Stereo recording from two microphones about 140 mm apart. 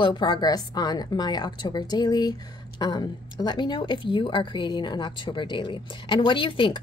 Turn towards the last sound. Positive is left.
turn(degrees=35)  # may be behind; listen again after turning